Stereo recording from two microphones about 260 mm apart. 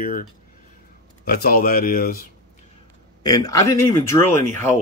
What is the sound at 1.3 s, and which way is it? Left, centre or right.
Speech, left.